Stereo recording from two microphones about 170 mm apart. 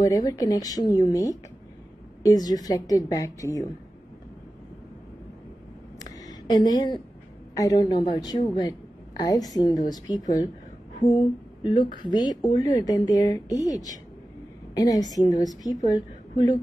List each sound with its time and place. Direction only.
0.0 s a woman's voice: 20° left (ahead or behind)
6.0 s a sound: 25° left (ahead or behind)
7.5 s a woman's voice: 20° left (ahead or behind)